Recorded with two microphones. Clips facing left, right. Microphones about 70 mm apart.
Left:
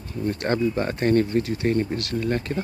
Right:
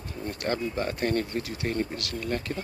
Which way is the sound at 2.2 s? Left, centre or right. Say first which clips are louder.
Left 4 dB; left.